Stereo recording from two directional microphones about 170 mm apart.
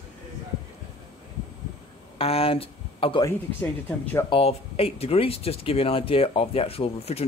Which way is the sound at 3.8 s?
10° left (ahead or behind).